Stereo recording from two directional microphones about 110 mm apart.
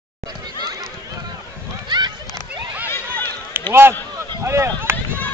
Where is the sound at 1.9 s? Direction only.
40° right (ahead or behind).